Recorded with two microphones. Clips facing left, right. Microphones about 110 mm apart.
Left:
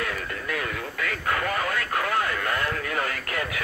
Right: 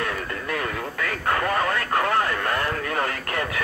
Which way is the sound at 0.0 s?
40° right (ahead or behind).